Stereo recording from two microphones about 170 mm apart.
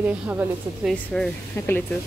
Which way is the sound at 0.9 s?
5° left (ahead or behind).